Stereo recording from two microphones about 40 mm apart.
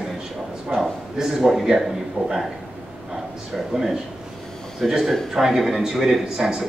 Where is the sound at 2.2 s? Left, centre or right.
Right.